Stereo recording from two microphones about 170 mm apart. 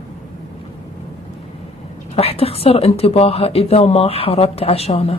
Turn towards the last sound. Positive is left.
turn(degrees=35)  # may be behind; listen again after turning